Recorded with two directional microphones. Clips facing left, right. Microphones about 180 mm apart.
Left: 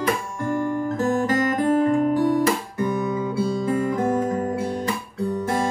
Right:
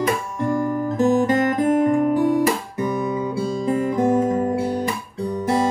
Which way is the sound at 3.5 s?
20° right (ahead or behind).